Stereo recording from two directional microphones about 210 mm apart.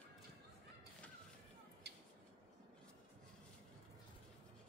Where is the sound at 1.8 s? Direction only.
50° right (ahead or behind).